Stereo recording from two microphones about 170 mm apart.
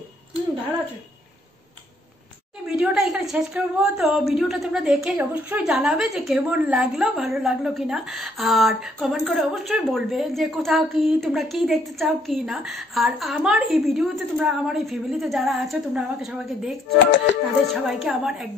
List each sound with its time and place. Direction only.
2.7 s a woman's voice: 5° right (ahead or behind)
17.0 s music: 90° left
17.8 s a woman's voice: centre (ahead or behind)